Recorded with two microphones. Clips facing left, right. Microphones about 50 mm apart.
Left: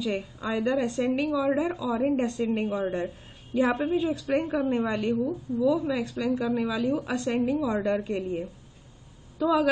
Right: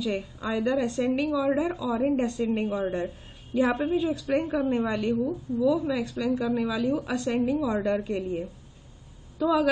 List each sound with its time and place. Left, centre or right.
0.4 s a woman's voice: centre
5.2 s a woman's voice: centre